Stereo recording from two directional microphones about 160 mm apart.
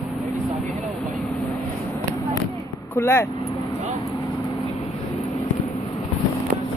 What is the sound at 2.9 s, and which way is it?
Speech, 15° left (ahead or behind).